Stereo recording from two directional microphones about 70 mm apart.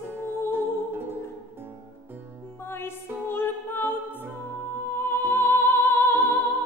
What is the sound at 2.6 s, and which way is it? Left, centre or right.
Music, left.